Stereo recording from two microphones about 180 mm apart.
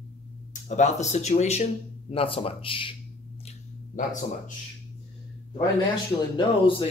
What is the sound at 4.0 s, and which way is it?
Speech, 45° left (ahead or behind).